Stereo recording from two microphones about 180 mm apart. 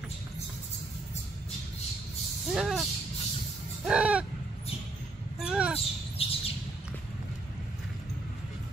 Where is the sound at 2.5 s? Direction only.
Centre (ahead or behind).